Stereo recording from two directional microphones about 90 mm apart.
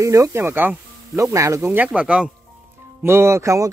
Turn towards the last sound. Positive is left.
turn(degrees=-35)  # may be behind; listen again after turning